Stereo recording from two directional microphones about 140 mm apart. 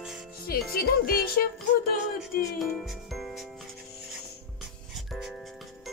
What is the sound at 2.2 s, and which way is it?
Speech, centre (ahead or behind).